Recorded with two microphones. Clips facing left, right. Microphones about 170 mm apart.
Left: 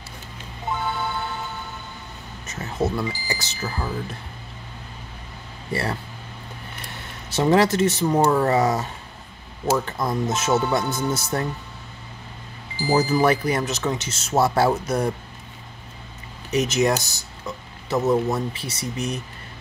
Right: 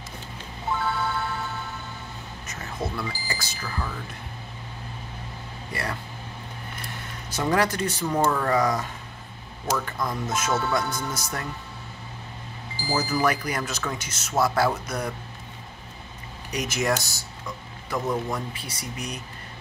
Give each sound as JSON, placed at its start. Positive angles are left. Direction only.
{"t": 0.7, "sound": "music", "side_deg": 20}
{"t": 2.4, "sound": "speech", "side_deg": 25}
{"t": 5.7, "sound": "speech", "side_deg": 30}
{"t": 7.3, "sound": "speech", "side_deg": 25}
{"t": 12.7, "sound": "speech", "side_deg": 20}
{"t": 16.4, "sound": "speech", "side_deg": 25}